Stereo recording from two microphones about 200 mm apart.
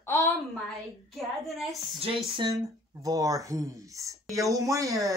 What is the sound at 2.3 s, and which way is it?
Speech, 20° right (ahead or behind).